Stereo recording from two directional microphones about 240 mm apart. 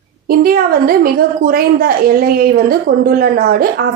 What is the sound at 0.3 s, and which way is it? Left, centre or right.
A woman's voice, right.